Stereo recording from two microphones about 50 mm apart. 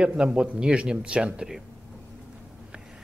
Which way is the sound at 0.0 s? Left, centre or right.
Right.